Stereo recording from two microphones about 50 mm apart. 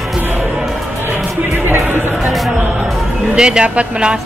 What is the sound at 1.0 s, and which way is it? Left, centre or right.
Music, right.